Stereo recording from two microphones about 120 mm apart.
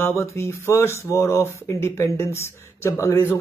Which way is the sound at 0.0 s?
25° left (ahead or behind).